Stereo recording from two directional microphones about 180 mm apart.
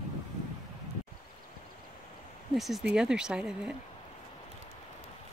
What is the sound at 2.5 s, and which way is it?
Speech, centre (ahead or behind).